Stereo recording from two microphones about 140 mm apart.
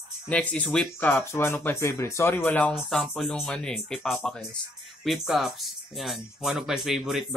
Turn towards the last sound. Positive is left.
turn(degrees=0)  # may be behind; listen again after turning